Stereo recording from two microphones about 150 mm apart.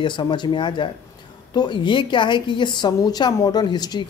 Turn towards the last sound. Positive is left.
turn(degrees=25)  # may be behind; listen again after turning